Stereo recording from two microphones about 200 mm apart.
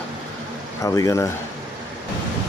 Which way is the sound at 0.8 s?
15° left (ahead or behind).